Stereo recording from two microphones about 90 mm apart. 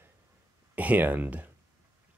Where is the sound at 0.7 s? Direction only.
20° right (ahead or behind).